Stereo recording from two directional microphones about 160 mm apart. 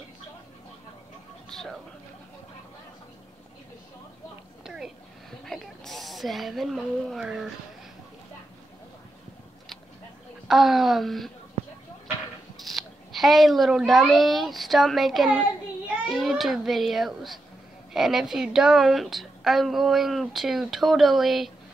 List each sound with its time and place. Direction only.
1.5 s speech: 5° left (ahead or behind)
4.6 s a sound: 5° right (ahead or behind)
10.5 s a woman's voice: centre (ahead or behind)
12.6 s a child's voice: centre (ahead or behind)